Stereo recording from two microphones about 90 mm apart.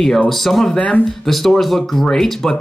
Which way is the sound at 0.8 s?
15° left (ahead or behind).